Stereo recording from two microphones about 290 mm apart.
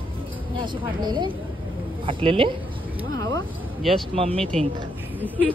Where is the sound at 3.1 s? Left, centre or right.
Centre.